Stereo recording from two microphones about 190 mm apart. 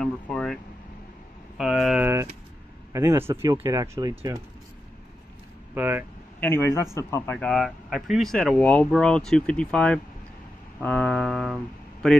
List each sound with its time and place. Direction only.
0.0 s air conditioning: 5° left (ahead or behind)
1.6 s a sound: centre (ahead or behind)
2.9 s speech: 15° right (ahead or behind)
5.8 s speech: 10° right (ahead or behind)
6.4 s a man's voice: 15° left (ahead or behind)